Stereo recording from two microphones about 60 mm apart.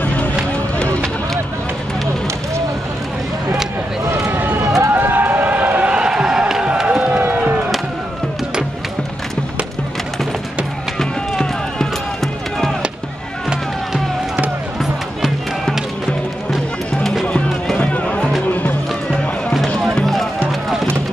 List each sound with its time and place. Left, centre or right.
0.0 s run: left
4.0 s a sound: right
4.6 s run: right
4.9 s a sound: right
7.2 s music: right
11.0 s run: centre
13.5 s music: centre
17.7 s music: left